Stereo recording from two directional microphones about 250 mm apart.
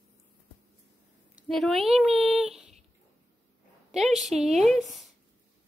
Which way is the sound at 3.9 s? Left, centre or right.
Centre.